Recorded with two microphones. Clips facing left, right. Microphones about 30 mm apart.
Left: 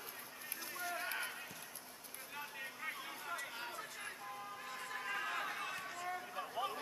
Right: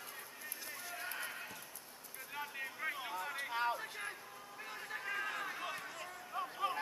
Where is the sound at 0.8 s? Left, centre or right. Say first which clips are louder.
Left 5 dB; centre.